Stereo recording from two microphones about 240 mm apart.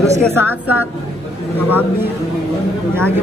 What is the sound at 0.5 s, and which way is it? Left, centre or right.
Speech, left.